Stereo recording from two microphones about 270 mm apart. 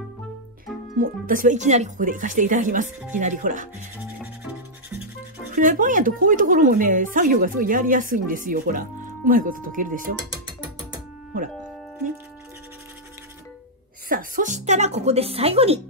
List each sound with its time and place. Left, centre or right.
0.9 s speech: right
5.6 s speech: right
14.0 s speech: right